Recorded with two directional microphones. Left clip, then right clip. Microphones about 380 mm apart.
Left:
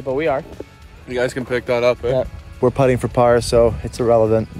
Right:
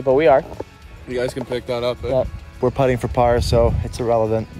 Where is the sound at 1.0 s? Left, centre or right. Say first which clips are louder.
Left 2 dB; centre.